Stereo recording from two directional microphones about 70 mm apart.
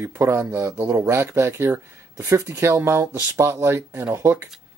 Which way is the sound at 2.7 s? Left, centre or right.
Right.